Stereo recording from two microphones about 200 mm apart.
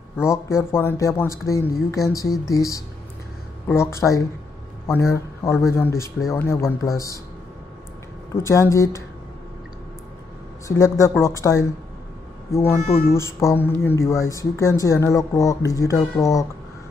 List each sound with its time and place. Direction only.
0.3 s a man's voice: 15° left (ahead or behind)
8.4 s speech: 15° left (ahead or behind)
10.7 s speech: 15° left (ahead or behind)